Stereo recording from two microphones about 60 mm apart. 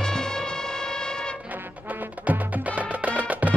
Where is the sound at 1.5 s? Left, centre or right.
Right.